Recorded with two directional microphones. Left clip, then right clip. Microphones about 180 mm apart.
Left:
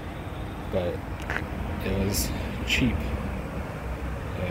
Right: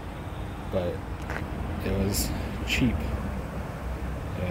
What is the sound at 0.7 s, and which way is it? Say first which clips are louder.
Speech: left 1 dB; 5° right (ahead or behind).